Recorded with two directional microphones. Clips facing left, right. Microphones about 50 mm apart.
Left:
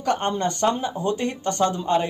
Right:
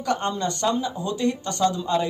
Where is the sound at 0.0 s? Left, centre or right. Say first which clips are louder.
Left 2 dB; left.